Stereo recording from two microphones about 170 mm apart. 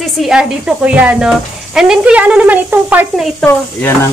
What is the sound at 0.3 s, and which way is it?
A woman's voice, 5° right (ahead or behind).